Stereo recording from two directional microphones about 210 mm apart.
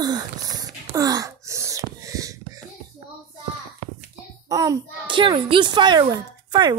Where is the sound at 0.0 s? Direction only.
20° right (ahead or behind).